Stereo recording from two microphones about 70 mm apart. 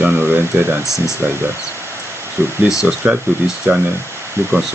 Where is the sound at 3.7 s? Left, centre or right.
Right.